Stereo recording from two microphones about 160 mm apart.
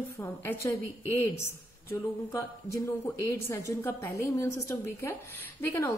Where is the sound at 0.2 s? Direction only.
15° left (ahead or behind).